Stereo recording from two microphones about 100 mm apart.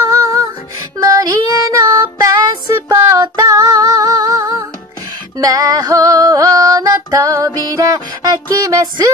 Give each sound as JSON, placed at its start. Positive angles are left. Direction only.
{"t": 1.0, "sound": "child singing", "side_deg": -35}
{"t": 5.4, "sound": "music", "side_deg": -35}